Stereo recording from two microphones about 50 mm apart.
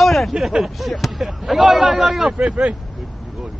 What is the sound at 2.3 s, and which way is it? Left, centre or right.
Speech, centre.